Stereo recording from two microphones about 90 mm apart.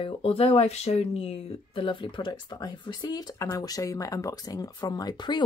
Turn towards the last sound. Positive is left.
turn(degrees=55)  # may be behind; listen again after turning